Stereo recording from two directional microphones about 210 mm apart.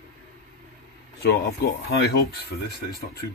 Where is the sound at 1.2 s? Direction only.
50° left (ahead or behind).